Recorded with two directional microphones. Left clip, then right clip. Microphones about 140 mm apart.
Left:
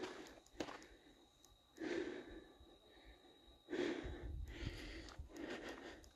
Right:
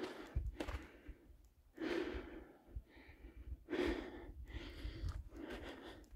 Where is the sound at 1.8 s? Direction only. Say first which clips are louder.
Right 3 dB; 40° right (ahead or behind).